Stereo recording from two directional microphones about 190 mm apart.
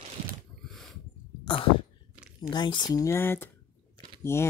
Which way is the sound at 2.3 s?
25° left (ahead or behind).